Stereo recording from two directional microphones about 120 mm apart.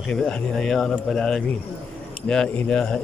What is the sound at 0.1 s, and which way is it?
Speech, 5° left (ahead or behind).